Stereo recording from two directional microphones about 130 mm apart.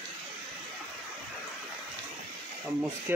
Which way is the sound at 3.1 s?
15° right (ahead or behind).